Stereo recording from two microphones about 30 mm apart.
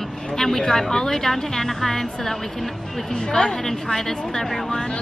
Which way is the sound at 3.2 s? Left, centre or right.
Left.